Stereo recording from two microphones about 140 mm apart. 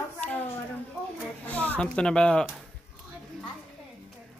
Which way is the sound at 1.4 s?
10° left (ahead or behind).